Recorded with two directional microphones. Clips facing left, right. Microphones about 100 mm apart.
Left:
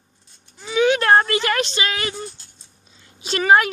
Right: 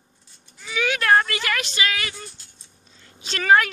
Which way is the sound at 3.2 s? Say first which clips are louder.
Left 2 dB; 15° left (ahead or behind).